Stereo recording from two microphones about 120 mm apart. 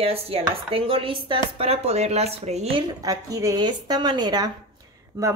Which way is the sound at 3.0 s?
30° right (ahead or behind).